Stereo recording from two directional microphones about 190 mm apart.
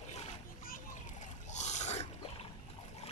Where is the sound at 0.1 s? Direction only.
35° left (ahead or behind).